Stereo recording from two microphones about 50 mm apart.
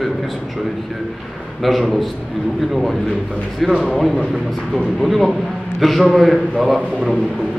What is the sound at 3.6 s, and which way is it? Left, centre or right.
A man's voice, centre.